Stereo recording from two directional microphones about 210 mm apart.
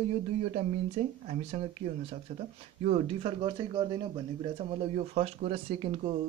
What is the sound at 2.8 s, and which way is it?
Speech, 30° right (ahead or behind).